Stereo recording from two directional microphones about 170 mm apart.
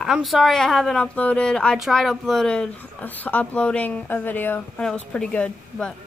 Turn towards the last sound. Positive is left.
turn(degrees=5)  # may be behind; listen again after turning